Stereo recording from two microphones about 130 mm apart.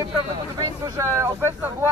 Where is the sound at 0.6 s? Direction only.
25° right (ahead or behind).